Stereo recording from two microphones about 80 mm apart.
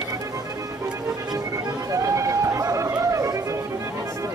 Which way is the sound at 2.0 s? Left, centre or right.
Right.